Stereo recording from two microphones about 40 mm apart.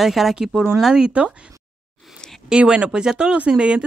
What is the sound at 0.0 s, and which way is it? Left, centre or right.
Speech, centre.